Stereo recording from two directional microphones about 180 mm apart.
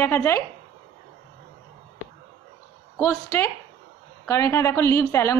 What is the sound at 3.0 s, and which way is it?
A woman's voice, 15° left (ahead or behind).